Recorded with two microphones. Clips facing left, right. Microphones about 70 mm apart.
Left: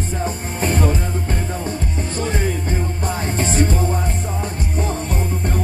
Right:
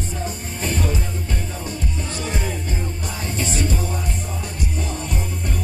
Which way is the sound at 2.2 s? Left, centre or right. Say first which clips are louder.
Left 6 dB; left.